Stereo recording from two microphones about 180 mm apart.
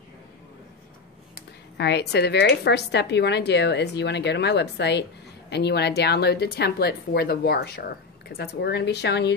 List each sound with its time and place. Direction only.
1.8 s speech: 70° left (ahead or behind)